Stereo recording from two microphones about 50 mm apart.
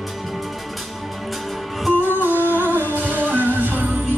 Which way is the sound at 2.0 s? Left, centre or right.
Right.